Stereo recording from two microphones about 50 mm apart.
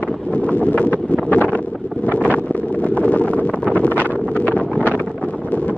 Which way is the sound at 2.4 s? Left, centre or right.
Left.